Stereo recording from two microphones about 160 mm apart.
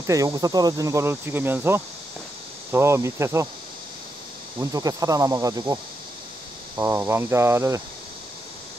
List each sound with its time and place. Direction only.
0.0 s speech: 20° right (ahead or behind)
4.6 s speech: 20° right (ahead or behind)
6.8 s speech: 15° right (ahead or behind)